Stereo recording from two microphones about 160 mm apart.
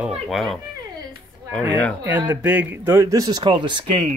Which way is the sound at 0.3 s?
Centre (ahead or behind).